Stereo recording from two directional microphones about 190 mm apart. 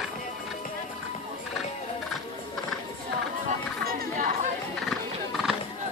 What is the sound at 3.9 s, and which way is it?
Chatter, 45° right (ahead or behind).